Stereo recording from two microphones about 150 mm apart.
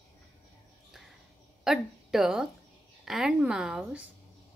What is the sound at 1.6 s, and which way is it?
A woman's voice, 5° right (ahead or behind).